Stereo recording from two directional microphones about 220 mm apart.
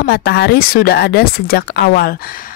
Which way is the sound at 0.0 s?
45° left (ahead or behind).